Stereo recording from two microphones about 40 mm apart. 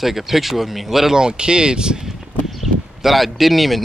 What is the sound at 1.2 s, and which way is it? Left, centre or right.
Speech, right.